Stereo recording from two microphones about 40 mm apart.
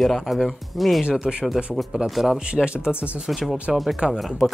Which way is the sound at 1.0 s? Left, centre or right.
Right.